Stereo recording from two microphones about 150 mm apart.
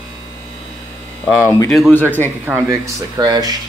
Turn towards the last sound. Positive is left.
turn(degrees=-25)  # may be behind; listen again after turning